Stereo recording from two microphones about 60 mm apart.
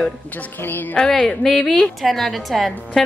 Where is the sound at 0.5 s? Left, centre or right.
Left.